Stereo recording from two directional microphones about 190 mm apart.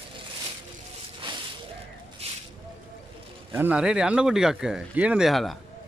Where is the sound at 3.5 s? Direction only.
10° right (ahead or behind).